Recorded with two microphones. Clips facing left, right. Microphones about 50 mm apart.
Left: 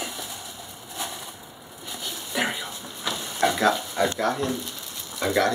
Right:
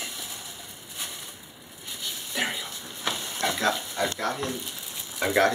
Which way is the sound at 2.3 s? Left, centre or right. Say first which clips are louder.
Left 3 dB; centre.